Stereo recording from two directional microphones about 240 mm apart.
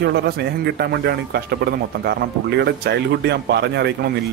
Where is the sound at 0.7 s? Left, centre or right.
Right.